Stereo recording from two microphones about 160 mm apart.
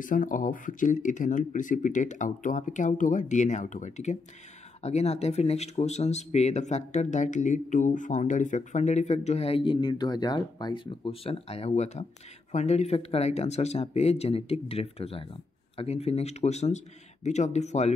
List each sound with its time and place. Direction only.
0.0 s speech: 55° left (ahead or behind)